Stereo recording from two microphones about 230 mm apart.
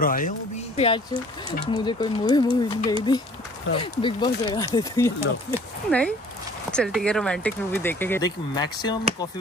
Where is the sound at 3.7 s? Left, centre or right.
Left.